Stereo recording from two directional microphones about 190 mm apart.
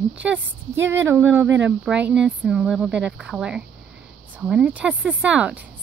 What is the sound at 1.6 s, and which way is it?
A woman's voice, 5° right (ahead or behind).